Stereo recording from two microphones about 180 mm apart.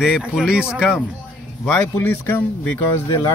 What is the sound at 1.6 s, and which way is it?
Speech, 10° left (ahead or behind).